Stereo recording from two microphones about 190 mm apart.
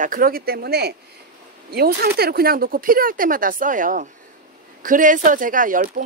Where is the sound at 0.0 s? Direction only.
45° right (ahead or behind).